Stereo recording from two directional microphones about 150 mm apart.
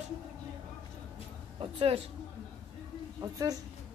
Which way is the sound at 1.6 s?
35° right (ahead or behind).